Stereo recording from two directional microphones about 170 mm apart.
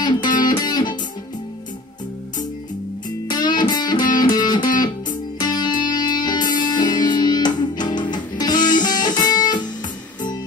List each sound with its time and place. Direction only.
0.0 s music: 25° left (ahead or behind)
3.3 s music: 25° left (ahead or behind)